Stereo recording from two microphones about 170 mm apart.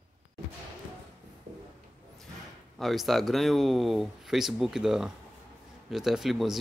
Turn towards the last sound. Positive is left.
turn(degrees=0)  # may be behind; listen again after turning